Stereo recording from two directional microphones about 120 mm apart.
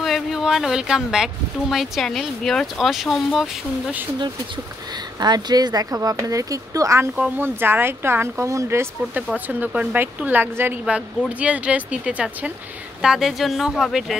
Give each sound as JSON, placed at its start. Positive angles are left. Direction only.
{"t": 0.0, "sound": "speech", "side_deg": 0}
{"t": 5.2, "sound": "a woman's voice", "side_deg": -35}